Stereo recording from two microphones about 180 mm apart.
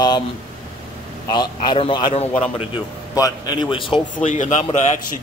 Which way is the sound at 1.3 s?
25° left (ahead or behind).